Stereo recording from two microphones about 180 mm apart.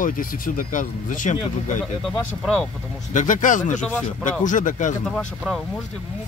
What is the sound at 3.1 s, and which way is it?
Speech, 45° left (ahead or behind).